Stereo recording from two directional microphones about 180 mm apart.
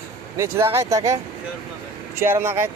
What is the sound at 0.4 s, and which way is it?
Speech, 15° right (ahead or behind).